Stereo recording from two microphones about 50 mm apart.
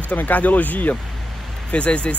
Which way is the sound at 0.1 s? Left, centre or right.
Left.